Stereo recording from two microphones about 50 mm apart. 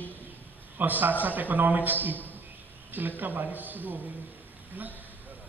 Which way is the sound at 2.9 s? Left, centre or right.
Right.